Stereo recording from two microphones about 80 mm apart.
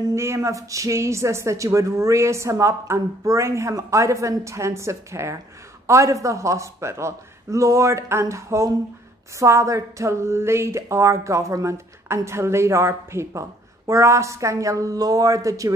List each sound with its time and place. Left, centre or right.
0.1 s speech: right